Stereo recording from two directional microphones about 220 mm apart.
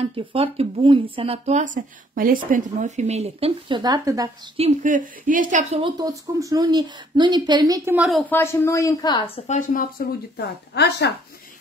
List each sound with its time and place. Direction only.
0.0 s speech: 25° right (ahead or behind)
4.6 s speech: 35° right (ahead or behind); by 8.2 s 5° right (ahead or behind)
8.3 s speech: 10° left (ahead or behind); by 11.1 s 50° left (ahead or behind)